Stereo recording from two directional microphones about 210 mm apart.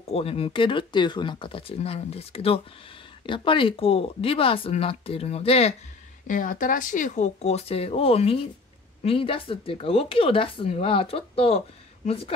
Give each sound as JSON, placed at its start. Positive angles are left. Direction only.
{"t": 0.0, "sound": "speech", "side_deg": 30}
{"t": 6.2, "sound": "speech", "side_deg": 40}